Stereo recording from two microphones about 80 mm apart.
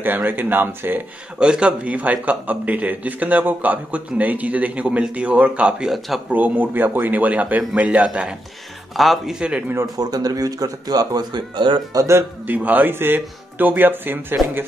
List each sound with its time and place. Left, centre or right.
0.0 s a man's voice: right
1.4 s a man's voice: centre
5.9 s speech: centre
6.3 s a man's voice: right
8.9 s speech: centre
9.9 s speech: right
11.9 s speech: right
12.4 s a man's voice: centre